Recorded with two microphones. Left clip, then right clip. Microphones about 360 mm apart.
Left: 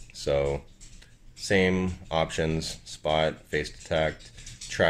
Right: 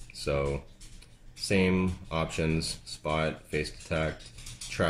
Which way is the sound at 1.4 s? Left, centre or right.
Centre.